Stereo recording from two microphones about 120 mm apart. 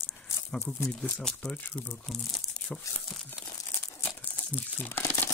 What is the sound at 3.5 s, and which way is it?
Crumpling, 25° left (ahead or behind).